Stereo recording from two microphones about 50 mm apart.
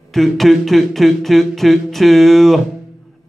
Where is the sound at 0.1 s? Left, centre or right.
Centre.